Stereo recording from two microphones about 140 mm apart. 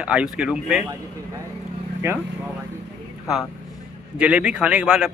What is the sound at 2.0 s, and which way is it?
Speech, 15° right (ahead or behind).